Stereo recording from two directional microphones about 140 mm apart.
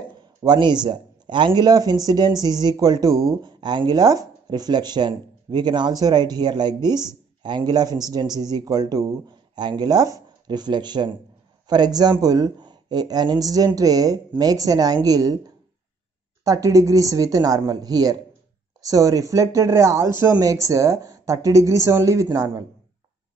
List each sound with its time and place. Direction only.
0.4 s speech: 30° right (ahead or behind)